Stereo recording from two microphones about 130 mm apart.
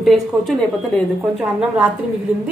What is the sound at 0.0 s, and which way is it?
Speech, centre (ahead or behind).